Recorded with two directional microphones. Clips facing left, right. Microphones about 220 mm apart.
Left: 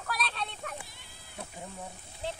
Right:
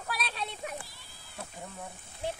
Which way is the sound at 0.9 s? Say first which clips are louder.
Left 1 dB; 20° left (ahead or behind).